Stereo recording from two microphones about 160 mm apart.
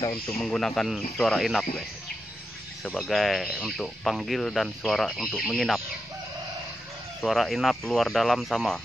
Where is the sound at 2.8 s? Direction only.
Centre (ahead or behind).